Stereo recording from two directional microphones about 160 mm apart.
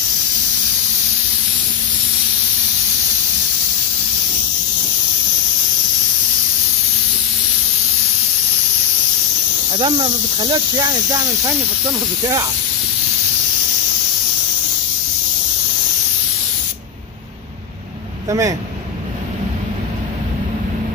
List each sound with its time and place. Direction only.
9.8 s speech: 30° right (ahead or behind)
18.3 s speech: 20° right (ahead or behind)